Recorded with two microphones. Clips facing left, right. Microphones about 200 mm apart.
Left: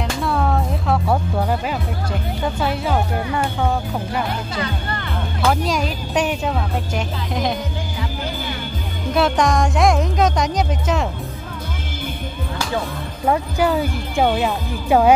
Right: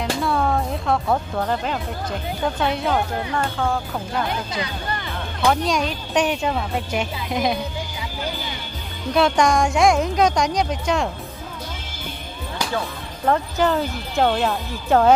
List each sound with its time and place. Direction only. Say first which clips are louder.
0.0 s music: even; centre (ahead or behind)
2.4 s speech: even; 5° left (ahead or behind)
3.3 s speech: left 1 dB; 20° left (ahead or behind)
5.5 s speech: even; 5° left (ahead or behind)
9.1 s speech: even; centre (ahead or behind)
13.2 s speech: left 1 dB; 10° left (ahead or behind)